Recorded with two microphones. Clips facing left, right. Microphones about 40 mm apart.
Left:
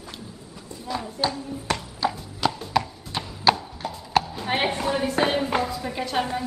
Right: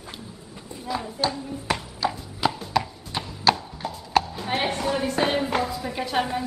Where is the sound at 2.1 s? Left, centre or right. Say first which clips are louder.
Even; centre.